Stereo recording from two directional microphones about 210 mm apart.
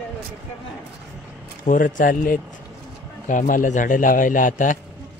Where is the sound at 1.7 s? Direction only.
40° left (ahead or behind).